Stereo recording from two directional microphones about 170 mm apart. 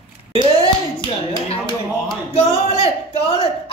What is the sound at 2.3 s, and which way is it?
Speech, 35° left (ahead or behind).